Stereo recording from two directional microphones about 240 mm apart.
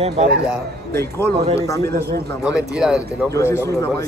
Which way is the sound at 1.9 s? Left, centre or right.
Right.